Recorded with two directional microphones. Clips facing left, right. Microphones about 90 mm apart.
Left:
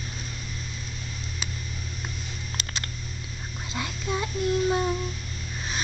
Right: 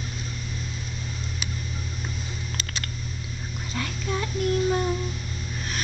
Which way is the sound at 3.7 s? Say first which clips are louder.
Even; 15° left (ahead or behind).